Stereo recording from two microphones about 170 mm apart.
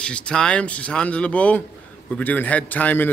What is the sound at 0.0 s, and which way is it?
A man's voice, 5° left (ahead or behind).